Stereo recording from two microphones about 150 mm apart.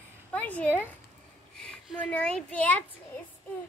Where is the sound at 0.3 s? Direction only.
10° left (ahead or behind).